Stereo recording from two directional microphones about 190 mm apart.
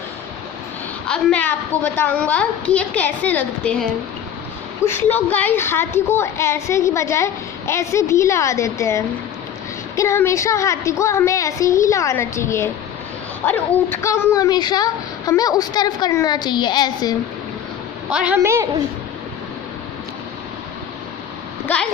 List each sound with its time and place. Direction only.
1.0 s a woman's voice: 5° left (ahead or behind); by 17.1 s 20° left (ahead or behind)
18.1 s a woman's voice: 5° right (ahead or behind)